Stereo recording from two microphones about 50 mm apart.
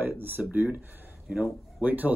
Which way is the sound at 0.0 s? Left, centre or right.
Right.